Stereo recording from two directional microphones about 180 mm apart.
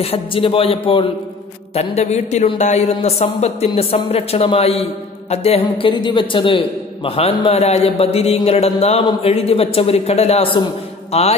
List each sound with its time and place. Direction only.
0.0 s a man's voice: 30° left (ahead or behind)